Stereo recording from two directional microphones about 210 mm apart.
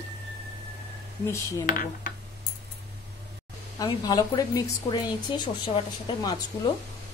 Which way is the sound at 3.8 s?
20° left (ahead or behind).